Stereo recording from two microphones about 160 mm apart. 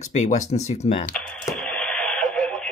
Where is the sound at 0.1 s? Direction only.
50° left (ahead or behind).